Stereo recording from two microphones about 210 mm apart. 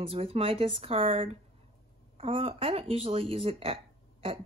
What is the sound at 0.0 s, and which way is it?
Speech, 25° right (ahead or behind).